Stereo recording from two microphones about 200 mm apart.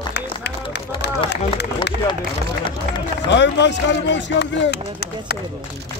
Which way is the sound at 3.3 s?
60° left (ahead or behind).